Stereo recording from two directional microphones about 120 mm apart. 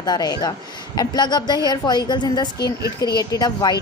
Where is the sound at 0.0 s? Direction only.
35° left (ahead or behind).